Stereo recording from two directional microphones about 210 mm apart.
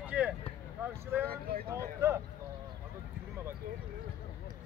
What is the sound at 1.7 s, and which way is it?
Speech, 15° right (ahead or behind).